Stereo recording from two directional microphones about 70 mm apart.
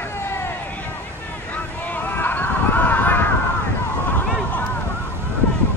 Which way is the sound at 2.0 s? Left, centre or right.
Left.